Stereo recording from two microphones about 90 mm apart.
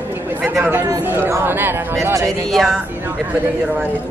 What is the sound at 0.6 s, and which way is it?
Speech, 20° right (ahead or behind).